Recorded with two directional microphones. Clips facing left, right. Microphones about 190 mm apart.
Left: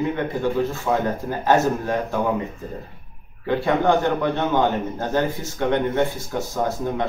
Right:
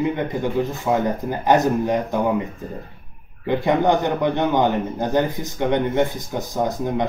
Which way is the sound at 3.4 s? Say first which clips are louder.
Right 1 dB; 20° right (ahead or behind).